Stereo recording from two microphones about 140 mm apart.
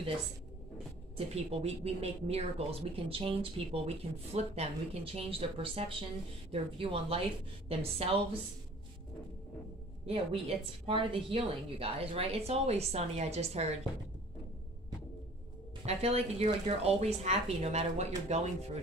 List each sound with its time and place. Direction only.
1.1 s a woman's voice: 45° right (ahead or behind)
10.0 s speech: 45° right (ahead or behind)
15.8 s speech: 50° right (ahead or behind)